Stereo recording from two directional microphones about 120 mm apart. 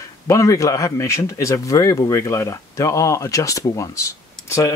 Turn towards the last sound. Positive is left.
turn(degrees=25)  # may be behind; listen again after turning